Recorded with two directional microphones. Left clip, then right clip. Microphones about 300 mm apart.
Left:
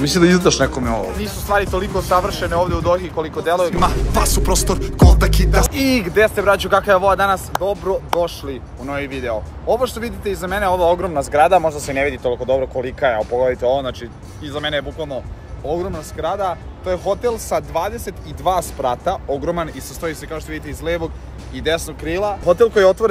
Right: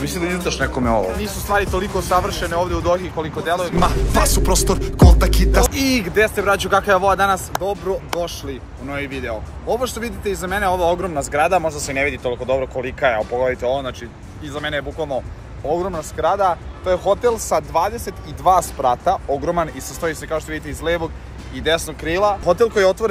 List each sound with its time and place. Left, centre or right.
0.1 s speech: left
0.6 s speech: centre